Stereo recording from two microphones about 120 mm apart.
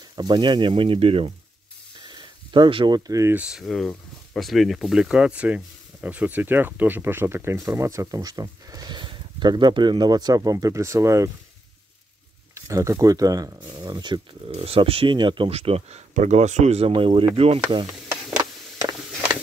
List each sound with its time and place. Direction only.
0.1 s speech: 40° right (ahead or behind)
2.0 s a sound: 40° right (ahead or behind)
3.1 s speech: 25° right (ahead or behind)
3.3 s speech: 5° right (ahead or behind); by 11.2 s 25° right (ahead or behind)
12.5 s speech: 25° right (ahead or behind)
14.5 s speech: 55° right (ahead or behind)
16.9 s speech: 50° right (ahead or behind)
18.4 s a sound: 30° right (ahead or behind)